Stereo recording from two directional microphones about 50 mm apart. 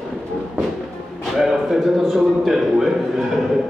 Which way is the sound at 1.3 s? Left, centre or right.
Centre.